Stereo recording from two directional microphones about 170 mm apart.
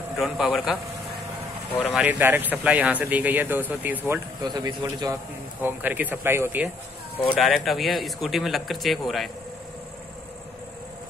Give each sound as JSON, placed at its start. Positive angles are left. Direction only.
{"t": 0.2, "sound": "a man's voice", "side_deg": 0}
{"t": 1.9, "sound": "speech", "side_deg": -10}
{"t": 4.4, "sound": "a man's voice", "side_deg": -25}
{"t": 5.6, "sound": "speech", "side_deg": -10}
{"t": 7.3, "sound": "a man's voice", "side_deg": 0}